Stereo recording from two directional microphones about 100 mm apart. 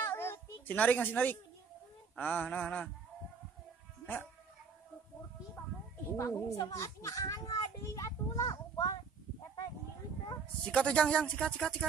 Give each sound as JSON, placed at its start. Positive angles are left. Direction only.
{"t": 0.0, "sound": "a sound", "side_deg": 25}
{"t": 2.1, "sound": "speech", "side_deg": 15}
{"t": 4.0, "sound": "music", "side_deg": 20}
{"t": 6.1, "sound": "a woman's voice", "side_deg": 30}
{"t": 10.6, "sound": "speech", "side_deg": 10}